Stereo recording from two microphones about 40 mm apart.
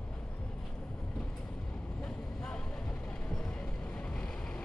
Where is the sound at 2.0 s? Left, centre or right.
Centre.